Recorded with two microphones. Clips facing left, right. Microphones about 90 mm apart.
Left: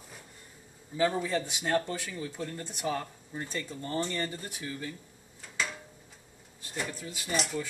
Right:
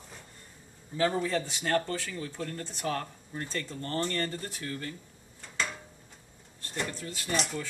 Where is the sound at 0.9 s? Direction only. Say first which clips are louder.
Even; 5° left (ahead or behind).